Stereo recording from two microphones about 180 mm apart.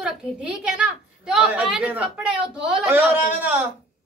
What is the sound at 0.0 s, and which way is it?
A woman's voice, 5° right (ahead or behind).